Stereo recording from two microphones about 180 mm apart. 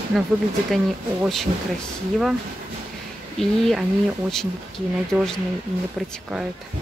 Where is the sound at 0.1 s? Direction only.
Centre (ahead or behind).